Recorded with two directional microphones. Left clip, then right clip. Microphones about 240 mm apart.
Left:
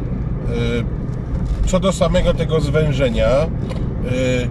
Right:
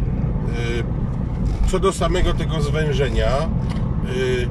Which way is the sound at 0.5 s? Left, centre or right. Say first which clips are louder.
Left 6 dB; centre.